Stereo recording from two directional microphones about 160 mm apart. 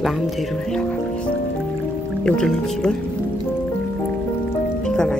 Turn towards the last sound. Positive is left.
turn(degrees=5)  # may be behind; listen again after turning